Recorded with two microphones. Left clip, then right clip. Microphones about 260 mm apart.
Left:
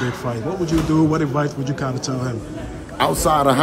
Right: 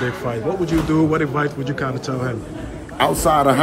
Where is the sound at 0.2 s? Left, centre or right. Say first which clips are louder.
Right 2 dB; centre.